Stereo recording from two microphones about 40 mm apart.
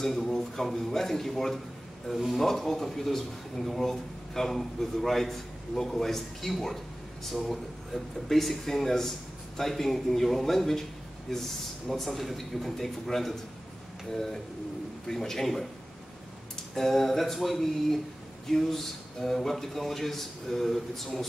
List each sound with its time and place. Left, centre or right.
0.0 s speech: centre
2.4 s speech: centre
16.7 s speech: centre